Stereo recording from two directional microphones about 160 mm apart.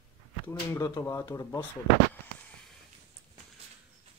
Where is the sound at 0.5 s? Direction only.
20° left (ahead or behind).